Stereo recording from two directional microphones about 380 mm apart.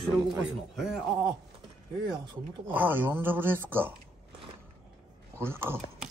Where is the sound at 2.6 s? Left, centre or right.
Centre.